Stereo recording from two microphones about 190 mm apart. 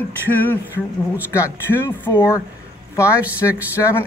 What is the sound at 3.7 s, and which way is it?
Speech, 15° left (ahead or behind).